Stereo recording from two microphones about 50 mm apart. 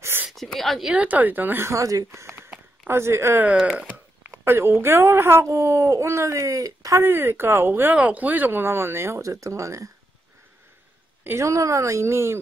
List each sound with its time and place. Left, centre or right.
0.3 s speech: centre
0.9 s speech: right
1.6 s speech: right
3.6 s speech: right
4.3 s speech: right
7.0 s speech: right
7.9 s speech: right
11.3 s speech: right